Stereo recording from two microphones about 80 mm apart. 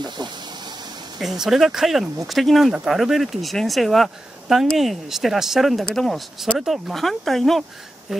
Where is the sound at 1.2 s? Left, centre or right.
Centre.